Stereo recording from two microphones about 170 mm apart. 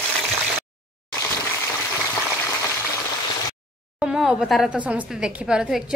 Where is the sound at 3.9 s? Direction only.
5° right (ahead or behind).